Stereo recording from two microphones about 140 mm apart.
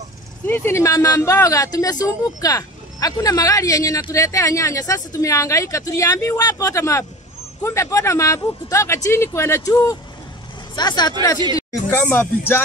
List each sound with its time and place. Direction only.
0.5 s speech: 15° left (ahead or behind)
11.9 s speech: 15° left (ahead or behind)